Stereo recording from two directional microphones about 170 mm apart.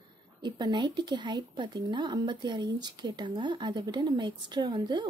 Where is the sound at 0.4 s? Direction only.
25° right (ahead or behind).